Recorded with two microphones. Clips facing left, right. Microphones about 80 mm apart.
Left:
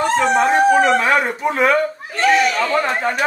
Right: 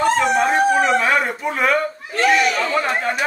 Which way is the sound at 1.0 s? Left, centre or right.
Centre.